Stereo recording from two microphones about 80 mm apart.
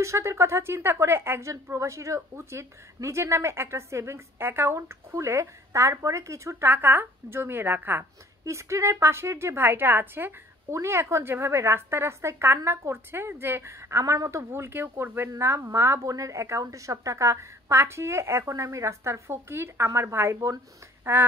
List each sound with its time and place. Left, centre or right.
0.0 s a woman's voice: right
6.7 s a woman's voice: right
8.5 s a woman's voice: right
21.0 s a sound: right